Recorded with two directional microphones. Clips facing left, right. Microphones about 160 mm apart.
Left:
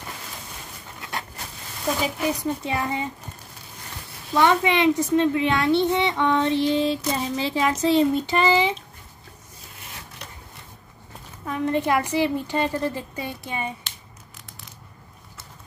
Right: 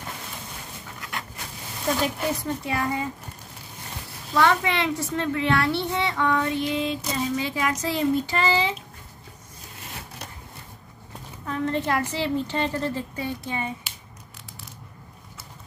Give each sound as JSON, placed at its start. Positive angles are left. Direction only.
{"t": 2.0, "sound": "a woman's voice", "side_deg": 5}
{"t": 2.6, "sound": "a child's voice", "side_deg": 25}
{"t": 4.3, "sound": "a child's voice", "side_deg": 20}
{"t": 11.4, "sound": "a woman's voice", "side_deg": 15}